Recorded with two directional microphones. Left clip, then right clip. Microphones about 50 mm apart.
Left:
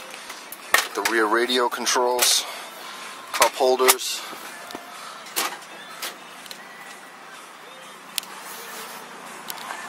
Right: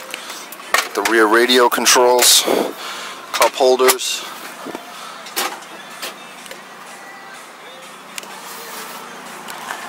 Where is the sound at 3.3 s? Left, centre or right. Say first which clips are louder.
Right 5 dB; centre.